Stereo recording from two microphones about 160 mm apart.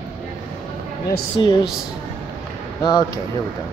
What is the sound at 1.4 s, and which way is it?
Speech, 30° left (ahead or behind).